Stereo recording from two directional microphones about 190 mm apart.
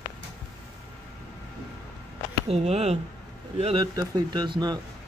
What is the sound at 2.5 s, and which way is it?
Speech, 35° right (ahead or behind).